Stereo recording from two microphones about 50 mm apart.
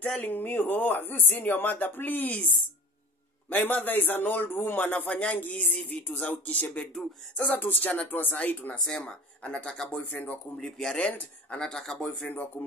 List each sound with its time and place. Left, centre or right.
0.2 s speech: left
3.4 s speech: left
5.0 s speech: left
5.4 s music: left
6.4 s speech: left
8.8 s music: centre
9.7 s speech: centre
10.1 s speech: left
10.6 s speech: centre
11.0 s music: left
11.5 s speech: centre
12.3 s speech: left